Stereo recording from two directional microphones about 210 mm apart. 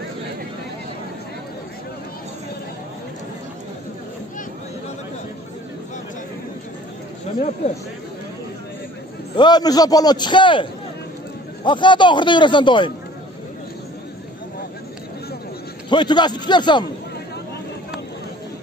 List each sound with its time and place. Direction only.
9.3 s a man's voice: 20° left (ahead or behind)
15.9 s a man's voice: 20° left (ahead or behind)